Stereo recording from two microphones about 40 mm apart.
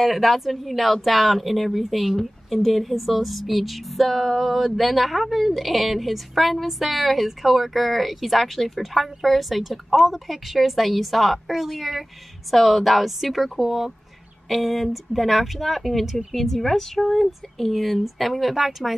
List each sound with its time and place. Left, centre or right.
0.0 s a woman's voice: centre